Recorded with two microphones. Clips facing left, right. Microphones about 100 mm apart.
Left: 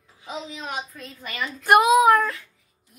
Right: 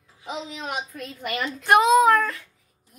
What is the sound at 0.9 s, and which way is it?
Speech, 70° right (ahead or behind).